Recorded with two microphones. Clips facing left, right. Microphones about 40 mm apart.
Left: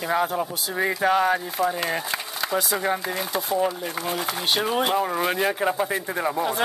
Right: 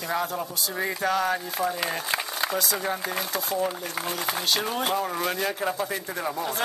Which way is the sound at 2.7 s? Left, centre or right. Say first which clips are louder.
Left 3 dB; centre.